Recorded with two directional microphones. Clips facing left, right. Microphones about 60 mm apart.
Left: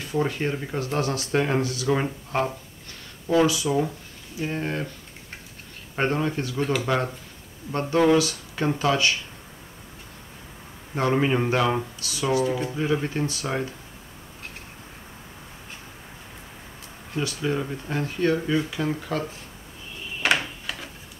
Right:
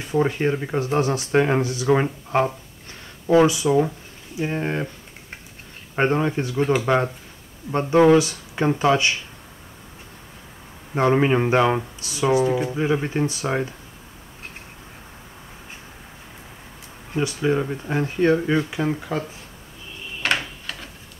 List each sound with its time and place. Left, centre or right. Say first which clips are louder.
0.0 s speech: right 5 dB; right
2.3 s a sound: right 5 dB; right
4.4 s speech: right 3 dB; right
5.9 s speech: right 4 dB; right
11.0 s speech: right 4 dB; centre
17.1 s speech: right 5 dB; right
20.3 s drawer open or close: even; centre